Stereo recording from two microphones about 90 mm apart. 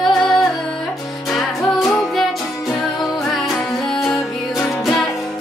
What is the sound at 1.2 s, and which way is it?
Music, centre (ahead or behind).